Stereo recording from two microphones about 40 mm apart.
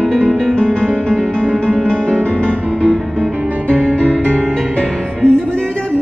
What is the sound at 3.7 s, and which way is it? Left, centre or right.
Music, left.